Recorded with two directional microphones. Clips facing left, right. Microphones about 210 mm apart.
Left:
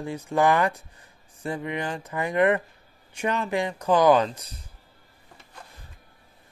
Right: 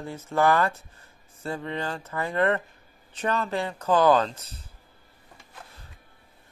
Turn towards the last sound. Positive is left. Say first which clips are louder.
# left 2 dB
turn(degrees=15)  # may be behind; listen again after turning